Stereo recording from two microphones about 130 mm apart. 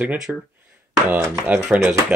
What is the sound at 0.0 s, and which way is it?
Speech, 10° right (ahead or behind).